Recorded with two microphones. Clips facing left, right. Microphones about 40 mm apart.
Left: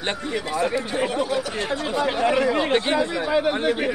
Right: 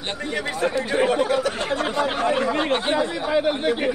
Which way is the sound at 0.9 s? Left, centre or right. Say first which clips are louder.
Right 4 dB; right.